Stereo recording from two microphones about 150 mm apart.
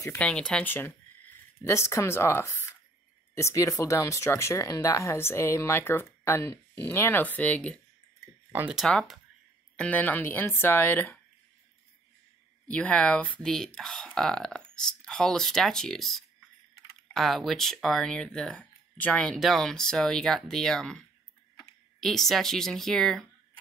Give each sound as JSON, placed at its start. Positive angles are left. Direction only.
{"t": 0.0, "sound": "speech", "side_deg": 10}
{"t": 8.5, "sound": "speech", "side_deg": -15}
{"t": 8.7, "sound": "speech", "side_deg": 0}
{"t": 12.6, "sound": "speech", "side_deg": 10}